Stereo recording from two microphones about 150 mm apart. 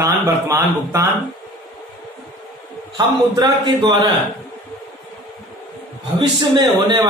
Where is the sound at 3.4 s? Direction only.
25° right (ahead or behind).